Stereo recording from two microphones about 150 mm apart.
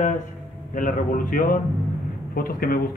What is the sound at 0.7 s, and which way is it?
A man's voice, 65° left (ahead or behind).